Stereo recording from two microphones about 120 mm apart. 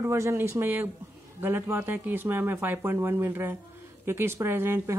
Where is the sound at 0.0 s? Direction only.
20° right (ahead or behind).